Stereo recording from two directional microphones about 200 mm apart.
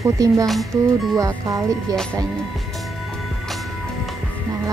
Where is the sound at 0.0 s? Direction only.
15° right (ahead or behind).